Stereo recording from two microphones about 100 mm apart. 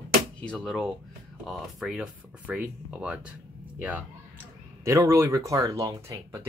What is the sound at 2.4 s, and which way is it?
Speech, 15° right (ahead or behind).